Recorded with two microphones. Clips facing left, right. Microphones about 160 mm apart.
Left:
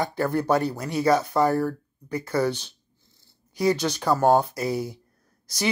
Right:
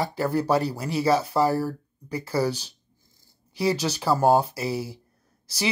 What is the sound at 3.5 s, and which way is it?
Speech, 30° right (ahead or behind).